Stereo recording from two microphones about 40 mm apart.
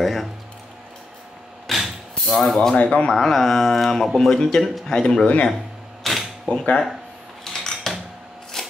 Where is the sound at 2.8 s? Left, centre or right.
Left.